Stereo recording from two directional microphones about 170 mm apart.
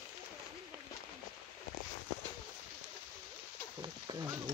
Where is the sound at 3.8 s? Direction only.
25° right (ahead or behind).